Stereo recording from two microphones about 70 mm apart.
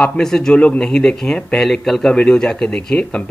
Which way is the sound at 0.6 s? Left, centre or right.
Centre.